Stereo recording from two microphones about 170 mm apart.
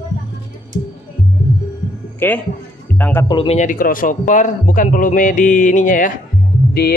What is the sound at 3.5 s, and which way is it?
A man's voice, 55° left (ahead or behind).